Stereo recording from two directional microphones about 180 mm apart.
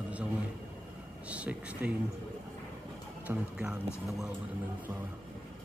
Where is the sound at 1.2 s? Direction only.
5° right (ahead or behind).